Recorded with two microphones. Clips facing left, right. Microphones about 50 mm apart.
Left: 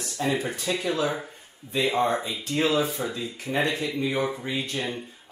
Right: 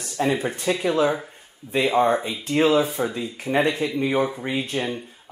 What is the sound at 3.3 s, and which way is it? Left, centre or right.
Speech, right.